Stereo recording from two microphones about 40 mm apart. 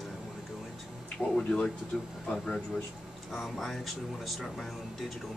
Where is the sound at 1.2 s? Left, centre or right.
Left.